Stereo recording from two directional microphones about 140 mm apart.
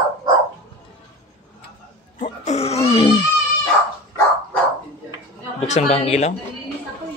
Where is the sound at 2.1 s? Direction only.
60° left (ahead or behind); by 3.2 s 40° left (ahead or behind).